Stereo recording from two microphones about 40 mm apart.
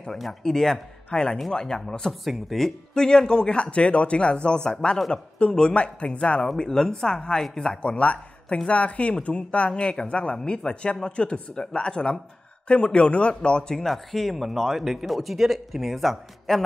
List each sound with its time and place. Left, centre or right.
0.2 s speech: centre
2.9 s a man's voice: centre
7.8 s a man's voice: left
13.8 s speech: centre